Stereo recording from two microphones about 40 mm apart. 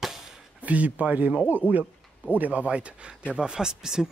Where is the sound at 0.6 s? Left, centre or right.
Right.